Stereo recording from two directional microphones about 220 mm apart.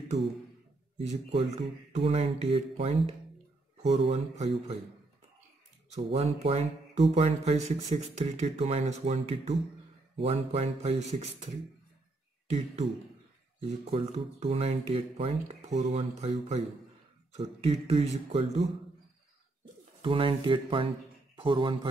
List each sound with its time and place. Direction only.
0.9 s speech: 30° right (ahead or behind)
5.9 s speech: 30° right (ahead or behind)
13.6 s speech: 25° right (ahead or behind)